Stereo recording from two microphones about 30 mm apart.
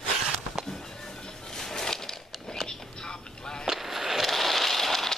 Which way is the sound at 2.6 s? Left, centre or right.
Left.